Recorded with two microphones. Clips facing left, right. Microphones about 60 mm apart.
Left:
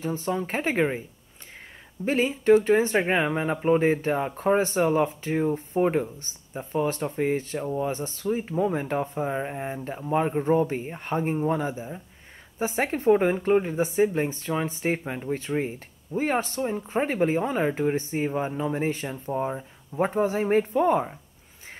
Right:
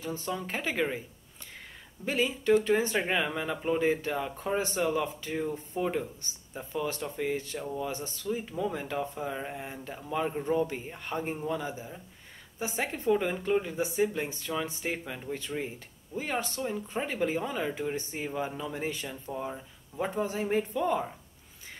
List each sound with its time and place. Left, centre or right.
0.2 s speech: left
2.0 s speech: left
12.5 s speech: left